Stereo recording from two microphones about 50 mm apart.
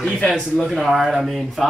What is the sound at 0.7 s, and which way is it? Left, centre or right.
Speech, centre.